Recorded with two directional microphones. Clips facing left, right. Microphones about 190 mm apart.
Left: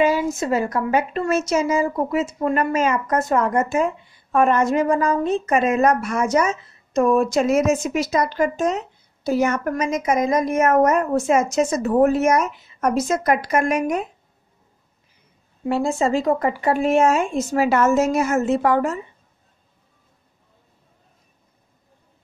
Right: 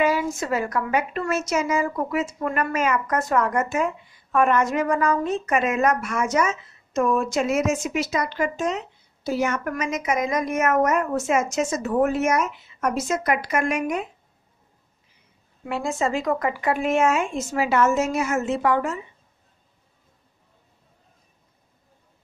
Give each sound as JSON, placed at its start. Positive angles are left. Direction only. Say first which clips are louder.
{"t": 0.0, "sound": "a woman's voice", "louder": "left 3 dB", "side_deg": 25}
{"t": 15.6, "sound": "a woman's voice", "louder": "left 5 dB", "side_deg": 30}